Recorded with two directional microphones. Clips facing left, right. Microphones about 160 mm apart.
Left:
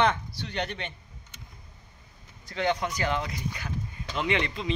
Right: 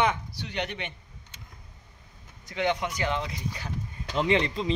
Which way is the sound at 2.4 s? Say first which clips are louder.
Even; 20° right (ahead or behind).